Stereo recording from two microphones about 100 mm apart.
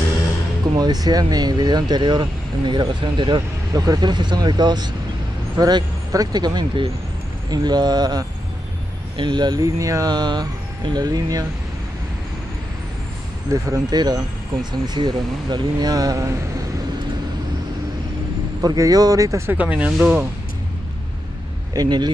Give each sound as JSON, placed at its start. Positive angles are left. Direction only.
{"t": 0.7, "sound": "speech", "side_deg": -40}
{"t": 13.5, "sound": "speech", "side_deg": -35}
{"t": 13.9, "sound": "speech", "side_deg": -45}
{"t": 18.6, "sound": "speech", "side_deg": -40}
{"t": 19.5, "sound": "speech", "side_deg": -15}
{"t": 21.7, "sound": "speech", "side_deg": -45}